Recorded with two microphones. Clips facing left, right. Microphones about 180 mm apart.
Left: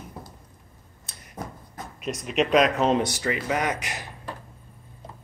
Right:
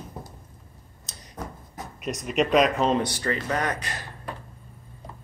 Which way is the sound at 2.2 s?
Centre (ahead or behind).